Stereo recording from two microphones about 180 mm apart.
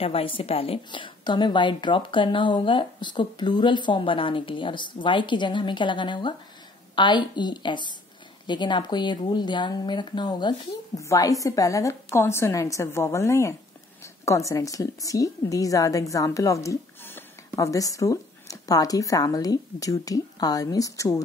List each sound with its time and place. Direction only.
0.0 s a woman's voice: 30° left (ahead or behind)